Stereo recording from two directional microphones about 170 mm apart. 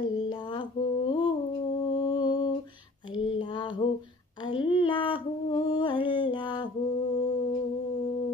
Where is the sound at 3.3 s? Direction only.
30° left (ahead or behind).